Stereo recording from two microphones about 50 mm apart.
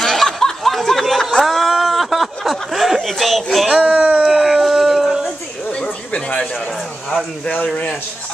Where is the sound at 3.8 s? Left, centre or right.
Right.